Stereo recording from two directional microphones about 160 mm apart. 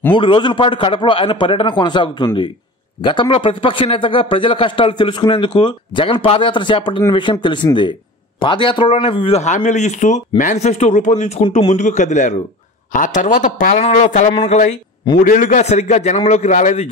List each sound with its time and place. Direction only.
0.1 s a man's voice: 30° left (ahead or behind); by 16.9 s 50° left (ahead or behind)